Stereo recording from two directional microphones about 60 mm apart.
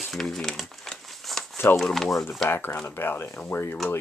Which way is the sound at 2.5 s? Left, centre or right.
Left.